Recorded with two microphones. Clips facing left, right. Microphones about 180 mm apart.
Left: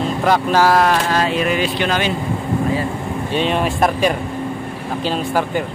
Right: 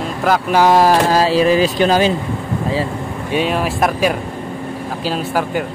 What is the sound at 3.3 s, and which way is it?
Speech, 5° right (ahead or behind).